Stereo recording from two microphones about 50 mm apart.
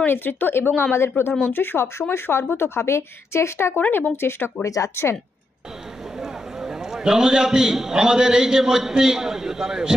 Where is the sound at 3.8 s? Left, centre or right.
Left.